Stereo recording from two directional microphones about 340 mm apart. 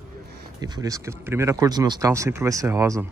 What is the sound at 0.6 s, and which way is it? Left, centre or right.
Speech, centre.